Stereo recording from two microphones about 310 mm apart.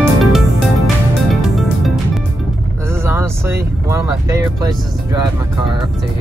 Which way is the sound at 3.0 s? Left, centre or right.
Centre.